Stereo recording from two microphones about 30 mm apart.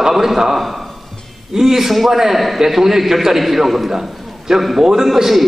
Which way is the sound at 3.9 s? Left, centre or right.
Centre.